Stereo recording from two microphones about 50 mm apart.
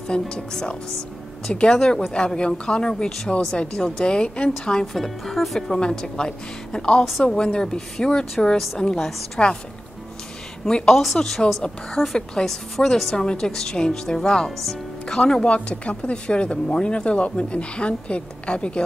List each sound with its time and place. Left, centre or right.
0.1 s speech: centre
2.9 s speech: centre
3.3 s speech: left
4.9 s speech: centre
5.8 s speech: centre
10.6 s speech: centre